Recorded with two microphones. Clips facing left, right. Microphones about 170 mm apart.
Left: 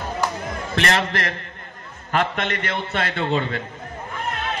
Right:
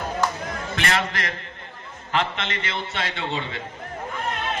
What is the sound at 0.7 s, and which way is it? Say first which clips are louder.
A man's voice: left 4 dB; 40° left (ahead or behind).